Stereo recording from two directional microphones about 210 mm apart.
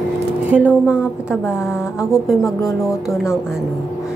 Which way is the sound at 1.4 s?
10° left (ahead or behind).